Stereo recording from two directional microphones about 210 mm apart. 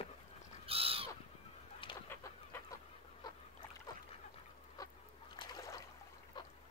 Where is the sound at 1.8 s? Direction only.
25° left (ahead or behind).